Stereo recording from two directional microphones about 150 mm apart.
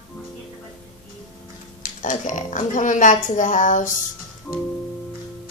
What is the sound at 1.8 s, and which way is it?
A woman's voice, 55° left (ahead or behind).